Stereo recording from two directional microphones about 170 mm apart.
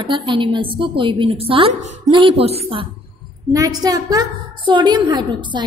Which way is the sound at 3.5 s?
20° right (ahead or behind).